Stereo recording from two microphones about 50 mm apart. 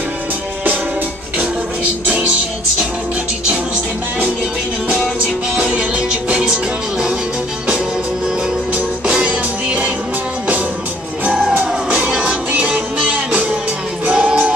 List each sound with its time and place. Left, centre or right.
1.4 s music: right
5.6 s music: centre
8.7 s music: right
11.6 s music: centre
14.1 s music: centre